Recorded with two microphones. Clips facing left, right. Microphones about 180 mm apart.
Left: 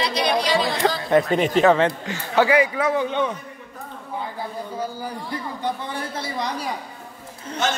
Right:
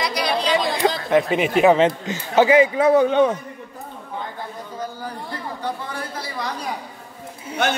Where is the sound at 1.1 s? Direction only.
5° right (ahead or behind); by 2.9 s 25° right (ahead or behind).